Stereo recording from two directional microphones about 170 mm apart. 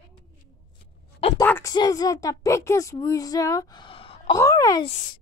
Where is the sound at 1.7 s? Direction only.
25° left (ahead or behind).